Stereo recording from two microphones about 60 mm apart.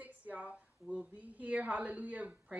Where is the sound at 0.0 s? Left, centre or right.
Right.